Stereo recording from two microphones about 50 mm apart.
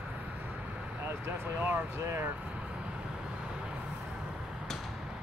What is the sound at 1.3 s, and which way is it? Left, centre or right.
Speech, right.